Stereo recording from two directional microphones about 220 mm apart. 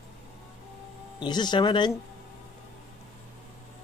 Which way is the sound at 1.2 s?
20° left (ahead or behind).